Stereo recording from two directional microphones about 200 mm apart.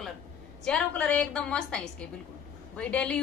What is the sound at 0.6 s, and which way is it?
A woman's voice, 5° left (ahead or behind).